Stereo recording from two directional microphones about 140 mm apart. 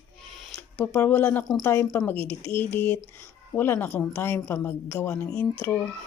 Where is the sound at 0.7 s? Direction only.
10° left (ahead or behind).